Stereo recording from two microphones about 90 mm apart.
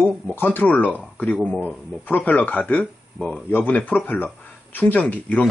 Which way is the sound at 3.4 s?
20° left (ahead or behind).